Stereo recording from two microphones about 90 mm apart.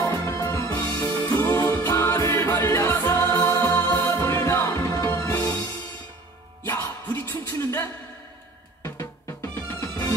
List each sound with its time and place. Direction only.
0.1 s music: 35° left (ahead or behind)
0.7 s music: 15° left (ahead or behind)
6.6 s music: 25° left (ahead or behind)